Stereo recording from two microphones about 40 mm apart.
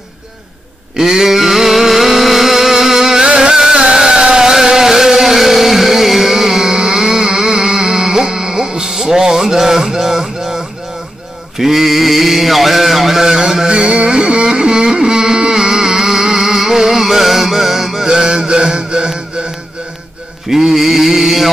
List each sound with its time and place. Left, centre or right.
0.9 s a sound: centre
3.3 s music: centre
11.5 s mantra: centre
13.7 s carnatic music: right; by 18.0 s centre
18.0 s mantra: right
20.4 s music: centre